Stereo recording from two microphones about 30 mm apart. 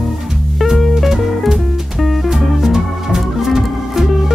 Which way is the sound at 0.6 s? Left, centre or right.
Centre.